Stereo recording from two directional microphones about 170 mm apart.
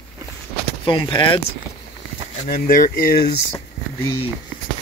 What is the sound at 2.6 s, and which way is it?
Speech, 55° left (ahead or behind).